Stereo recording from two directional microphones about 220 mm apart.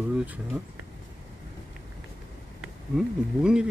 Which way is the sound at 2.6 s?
5° right (ahead or behind).